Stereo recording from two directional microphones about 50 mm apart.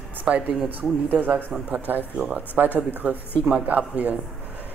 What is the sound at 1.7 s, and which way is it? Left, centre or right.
Speech, right.